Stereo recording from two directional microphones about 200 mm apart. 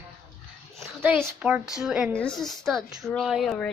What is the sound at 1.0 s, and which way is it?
A woman's voice, 10° right (ahead or behind).